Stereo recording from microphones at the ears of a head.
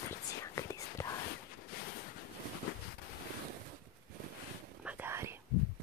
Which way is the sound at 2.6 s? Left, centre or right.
Left.